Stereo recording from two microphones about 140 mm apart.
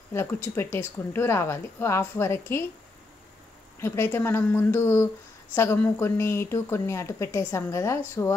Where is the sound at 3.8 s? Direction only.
15° left (ahead or behind).